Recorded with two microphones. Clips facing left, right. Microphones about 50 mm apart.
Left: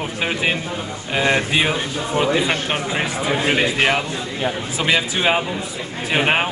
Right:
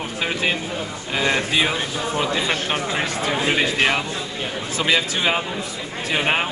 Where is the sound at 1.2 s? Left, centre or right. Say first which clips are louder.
Left 2 dB; centre.